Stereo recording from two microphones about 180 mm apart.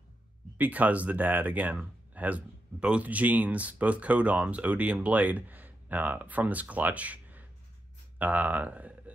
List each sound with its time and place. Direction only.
0.6 s speech: 10° right (ahead or behind)